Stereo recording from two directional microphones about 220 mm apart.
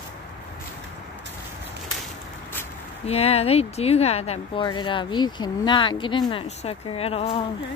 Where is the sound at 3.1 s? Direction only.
25° left (ahead or behind).